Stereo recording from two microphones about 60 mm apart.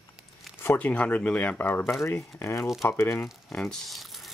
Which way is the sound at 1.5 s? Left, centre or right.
Left.